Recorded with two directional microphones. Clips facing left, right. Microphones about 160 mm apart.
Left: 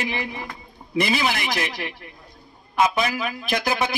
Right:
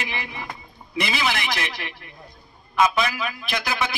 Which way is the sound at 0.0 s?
45° left (ahead or behind).